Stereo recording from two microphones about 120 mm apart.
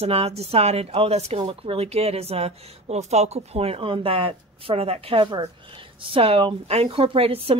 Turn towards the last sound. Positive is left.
turn(degrees=-50)  # may be behind; listen again after turning